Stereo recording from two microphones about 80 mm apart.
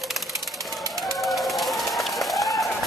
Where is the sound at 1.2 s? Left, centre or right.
Centre.